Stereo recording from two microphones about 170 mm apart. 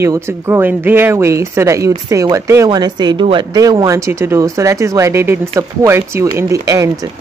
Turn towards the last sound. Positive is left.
turn(degrees=-20)  # may be behind; listen again after turning